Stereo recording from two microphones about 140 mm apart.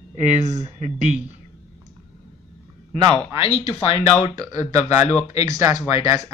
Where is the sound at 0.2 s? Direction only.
55° right (ahead or behind).